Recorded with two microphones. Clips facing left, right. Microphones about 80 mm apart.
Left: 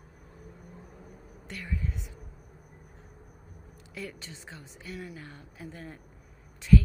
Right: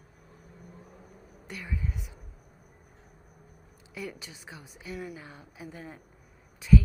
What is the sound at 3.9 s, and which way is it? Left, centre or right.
A woman's voice, centre.